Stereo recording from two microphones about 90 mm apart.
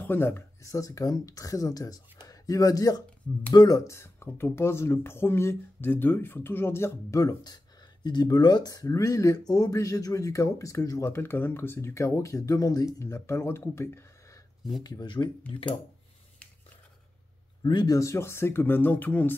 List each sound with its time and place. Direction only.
0.0 s speech: 25° left (ahead or behind); by 12.9 s 45° left (ahead or behind)
13.0 s speech: 30° left (ahead or behind)
14.8 s speech: 50° left (ahead or behind)
15.5 s speech: 70° left (ahead or behind)
17.6 s speech: 50° left (ahead or behind)
17.9 s speech: 35° left (ahead or behind)